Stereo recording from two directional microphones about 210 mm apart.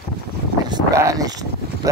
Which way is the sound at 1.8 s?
15° right (ahead or behind).